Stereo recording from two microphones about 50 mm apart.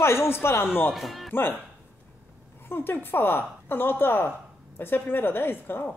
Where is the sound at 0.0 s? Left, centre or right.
Left.